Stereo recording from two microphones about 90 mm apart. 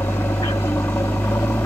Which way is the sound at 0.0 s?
25° left (ahead or behind).